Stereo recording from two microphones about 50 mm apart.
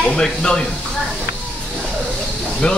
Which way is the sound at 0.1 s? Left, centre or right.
Centre.